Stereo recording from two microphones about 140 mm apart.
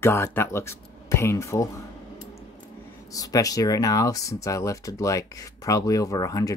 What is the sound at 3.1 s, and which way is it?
Speech, 25° left (ahead or behind).